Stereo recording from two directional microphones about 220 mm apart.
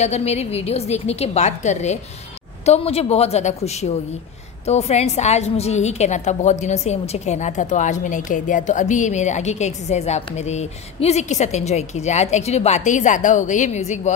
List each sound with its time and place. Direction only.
0.0 s a woman's voice: 30° left (ahead or behind)